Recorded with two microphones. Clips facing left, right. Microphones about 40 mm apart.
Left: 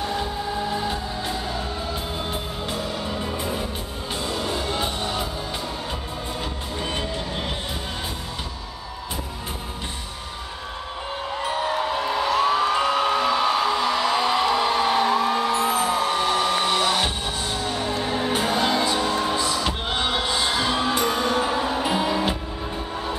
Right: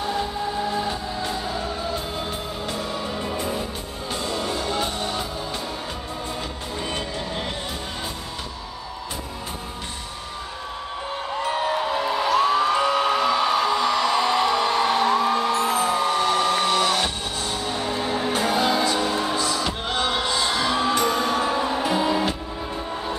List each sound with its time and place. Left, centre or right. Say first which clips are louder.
0.0 s choir: right 1 dB; centre
2.9 s music: even; centre
6.8 s music: left 1 dB; centre
11.5 s music: even; centre
17.6 s music: even; centre
20.1 s music: even; centre